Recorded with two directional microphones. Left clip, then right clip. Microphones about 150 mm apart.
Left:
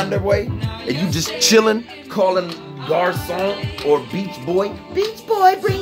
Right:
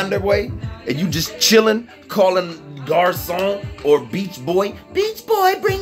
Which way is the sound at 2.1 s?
Centre (ahead or behind).